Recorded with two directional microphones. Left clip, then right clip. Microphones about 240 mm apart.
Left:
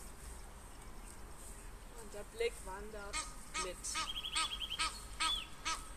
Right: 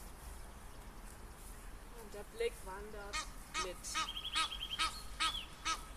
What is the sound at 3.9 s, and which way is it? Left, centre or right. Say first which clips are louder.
Crow: right 1 dB; centre.